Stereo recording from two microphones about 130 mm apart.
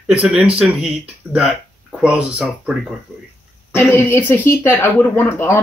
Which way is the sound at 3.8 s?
15° left (ahead or behind).